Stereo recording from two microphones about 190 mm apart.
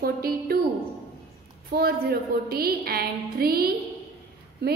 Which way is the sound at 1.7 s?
55° right (ahead or behind).